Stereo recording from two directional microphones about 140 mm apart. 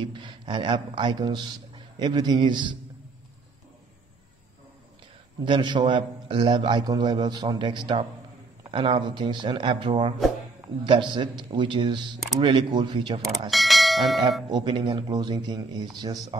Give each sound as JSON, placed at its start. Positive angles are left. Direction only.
{"t": 0.0, "sound": "a man's voice", "side_deg": -35}
{"t": 5.4, "sound": "a man's voice", "side_deg": -35}
{"t": 13.5, "sound": "speech", "side_deg": 0}
{"t": 14.5, "sound": "a man's voice", "side_deg": -35}